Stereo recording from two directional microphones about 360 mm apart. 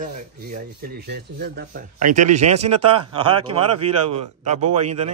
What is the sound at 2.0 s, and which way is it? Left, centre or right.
Speech, right.